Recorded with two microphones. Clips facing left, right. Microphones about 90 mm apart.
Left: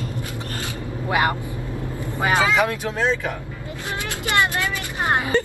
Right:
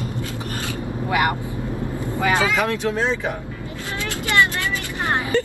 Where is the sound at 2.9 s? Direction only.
20° right (ahead or behind).